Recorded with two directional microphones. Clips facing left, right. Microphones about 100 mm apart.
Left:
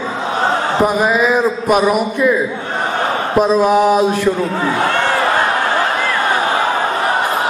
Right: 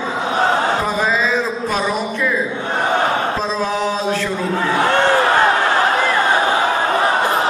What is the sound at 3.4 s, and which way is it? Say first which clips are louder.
Speech: left 8 dB; 15° left (ahead or behind).